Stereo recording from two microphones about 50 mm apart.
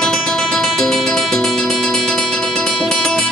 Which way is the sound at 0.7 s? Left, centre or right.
Centre.